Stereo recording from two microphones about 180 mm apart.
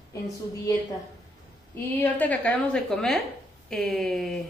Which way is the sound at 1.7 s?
10° left (ahead or behind).